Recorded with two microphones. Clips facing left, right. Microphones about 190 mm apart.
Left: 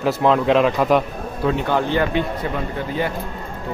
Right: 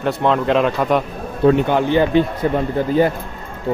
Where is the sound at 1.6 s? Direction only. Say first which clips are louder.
Right 4 dB; 15° right (ahead or behind).